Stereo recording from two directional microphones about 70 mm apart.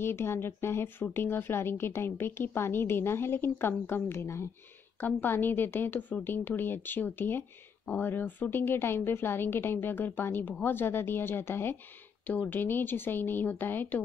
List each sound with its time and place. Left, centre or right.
0.0 s a woman's voice: left